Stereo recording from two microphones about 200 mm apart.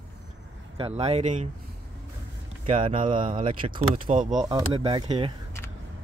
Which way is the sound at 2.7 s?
30° right (ahead or behind).